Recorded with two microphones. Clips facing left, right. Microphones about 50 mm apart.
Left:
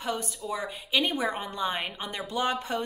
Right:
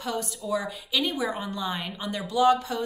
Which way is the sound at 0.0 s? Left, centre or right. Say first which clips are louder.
Right 1 dB; left.